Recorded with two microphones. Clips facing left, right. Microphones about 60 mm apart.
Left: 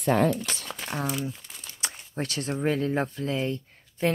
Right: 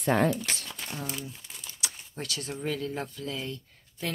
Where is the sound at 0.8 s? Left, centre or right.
Left.